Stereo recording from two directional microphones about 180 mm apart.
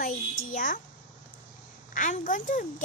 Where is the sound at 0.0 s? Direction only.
50° left (ahead or behind).